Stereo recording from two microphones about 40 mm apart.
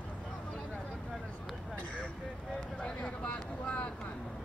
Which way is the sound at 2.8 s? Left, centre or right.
Left.